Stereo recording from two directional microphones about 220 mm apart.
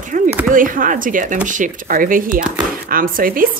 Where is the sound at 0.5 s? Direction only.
40° right (ahead or behind).